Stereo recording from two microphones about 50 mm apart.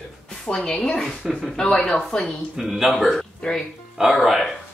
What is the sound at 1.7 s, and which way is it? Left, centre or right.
Speech, left.